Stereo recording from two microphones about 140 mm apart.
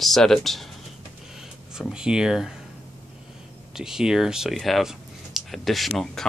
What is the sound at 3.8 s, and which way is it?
Speech, 5° right (ahead or behind).